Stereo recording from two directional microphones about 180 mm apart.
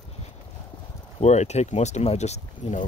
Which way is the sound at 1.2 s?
40° left (ahead or behind).